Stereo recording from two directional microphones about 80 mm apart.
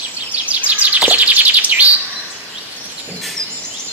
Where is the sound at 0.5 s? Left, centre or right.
Centre.